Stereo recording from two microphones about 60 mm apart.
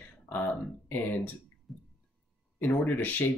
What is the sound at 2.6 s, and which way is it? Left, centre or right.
Speech, left.